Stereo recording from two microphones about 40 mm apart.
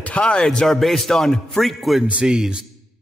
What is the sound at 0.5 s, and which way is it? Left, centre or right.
A man's voice, centre.